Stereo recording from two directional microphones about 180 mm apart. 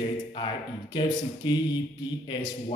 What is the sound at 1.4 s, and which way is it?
A man's voice, 25° left (ahead or behind).